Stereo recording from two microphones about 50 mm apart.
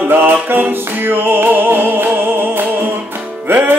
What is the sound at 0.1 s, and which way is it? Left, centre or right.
Music, right.